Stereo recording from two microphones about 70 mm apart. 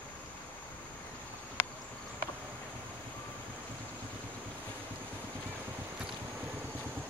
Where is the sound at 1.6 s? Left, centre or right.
Left.